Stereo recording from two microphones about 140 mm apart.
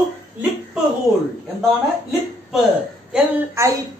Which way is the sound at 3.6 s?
20° right (ahead or behind).